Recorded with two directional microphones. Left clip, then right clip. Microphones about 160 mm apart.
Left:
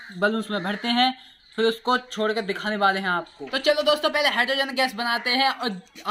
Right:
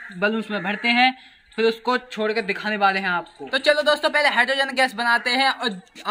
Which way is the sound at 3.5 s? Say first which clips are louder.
Right 2 dB; 5° right (ahead or behind).